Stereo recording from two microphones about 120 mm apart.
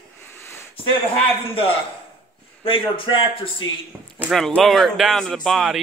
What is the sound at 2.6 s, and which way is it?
Speech, 45° left (ahead or behind).